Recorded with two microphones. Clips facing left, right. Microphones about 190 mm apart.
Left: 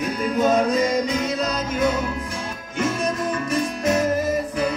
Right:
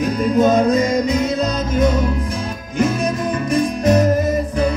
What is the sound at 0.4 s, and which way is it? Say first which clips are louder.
Music: right 5 dB; 35° right (ahead or behind).